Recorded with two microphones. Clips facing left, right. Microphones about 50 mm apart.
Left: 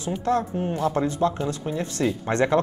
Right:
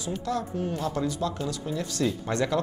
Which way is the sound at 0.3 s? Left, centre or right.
Left.